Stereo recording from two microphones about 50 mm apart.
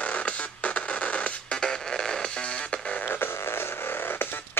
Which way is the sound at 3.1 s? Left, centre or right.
Left.